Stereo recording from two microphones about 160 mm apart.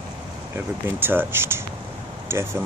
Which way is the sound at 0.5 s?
15° right (ahead or behind).